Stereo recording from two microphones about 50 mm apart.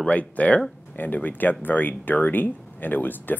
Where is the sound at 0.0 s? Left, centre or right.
Left.